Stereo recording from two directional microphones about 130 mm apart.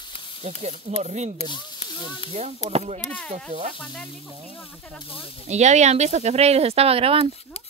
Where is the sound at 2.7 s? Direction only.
55° right (ahead or behind).